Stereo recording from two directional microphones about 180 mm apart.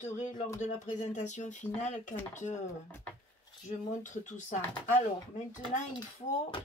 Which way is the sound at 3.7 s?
40° left (ahead or behind).